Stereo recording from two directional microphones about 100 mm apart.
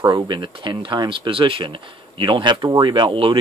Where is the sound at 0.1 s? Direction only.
45° right (ahead or behind).